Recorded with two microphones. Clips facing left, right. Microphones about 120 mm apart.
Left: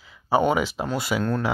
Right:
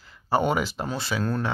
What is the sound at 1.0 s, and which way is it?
Speech, 20° left (ahead or behind).